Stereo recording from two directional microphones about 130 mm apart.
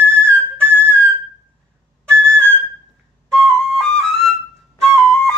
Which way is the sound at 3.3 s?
5° left (ahead or behind).